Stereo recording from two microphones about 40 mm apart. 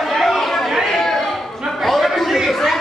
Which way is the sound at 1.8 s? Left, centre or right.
Centre.